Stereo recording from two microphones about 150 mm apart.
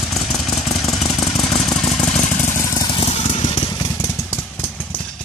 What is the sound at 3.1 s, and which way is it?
Vehicle, 45° left (ahead or behind).